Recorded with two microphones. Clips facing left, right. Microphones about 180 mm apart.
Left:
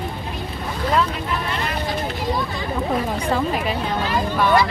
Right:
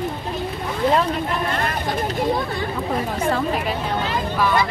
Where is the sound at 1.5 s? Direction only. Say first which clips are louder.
Right 1 dB; 50° right (ahead or behind).